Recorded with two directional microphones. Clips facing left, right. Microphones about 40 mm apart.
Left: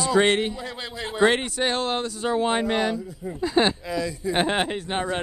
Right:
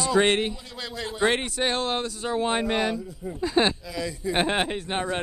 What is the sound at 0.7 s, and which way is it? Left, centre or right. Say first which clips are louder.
Speech: left 1 dB; left.